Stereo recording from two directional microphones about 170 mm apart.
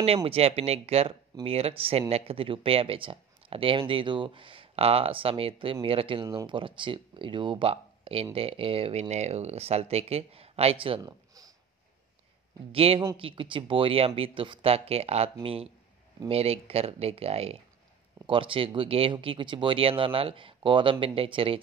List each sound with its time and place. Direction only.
0.0 s speech: 35° right (ahead or behind)
11.0 s a sound: 20° right (ahead or behind)
12.7 s speech: 35° right (ahead or behind)